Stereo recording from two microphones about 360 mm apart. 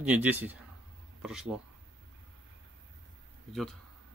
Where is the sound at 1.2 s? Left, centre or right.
Centre.